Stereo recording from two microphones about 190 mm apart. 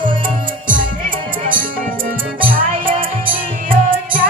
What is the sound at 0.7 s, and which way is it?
Music, 45° right (ahead or behind).